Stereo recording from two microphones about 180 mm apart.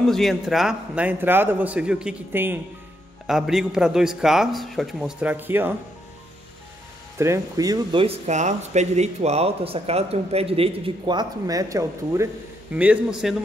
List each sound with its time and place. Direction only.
0.0 s a man's voice: centre (ahead or behind)
7.2 s a man's voice: 20° right (ahead or behind)